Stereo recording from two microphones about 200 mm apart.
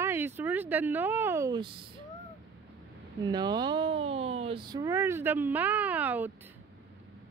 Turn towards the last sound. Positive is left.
turn(degrees=-10)  # may be behind; listen again after turning